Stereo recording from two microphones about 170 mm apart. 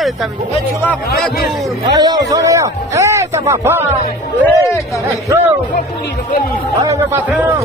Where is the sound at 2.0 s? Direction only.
25° right (ahead or behind).